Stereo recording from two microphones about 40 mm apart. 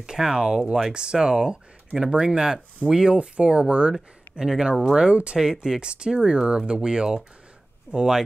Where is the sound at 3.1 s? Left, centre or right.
Right.